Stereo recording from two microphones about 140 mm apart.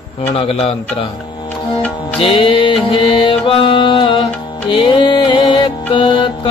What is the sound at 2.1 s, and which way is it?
Music, 35° left (ahead or behind).